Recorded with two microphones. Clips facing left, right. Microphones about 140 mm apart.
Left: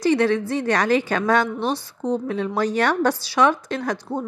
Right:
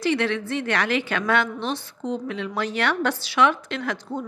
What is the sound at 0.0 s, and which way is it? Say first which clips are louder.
A woman's voice: left 5 dB; 40° left (ahead or behind).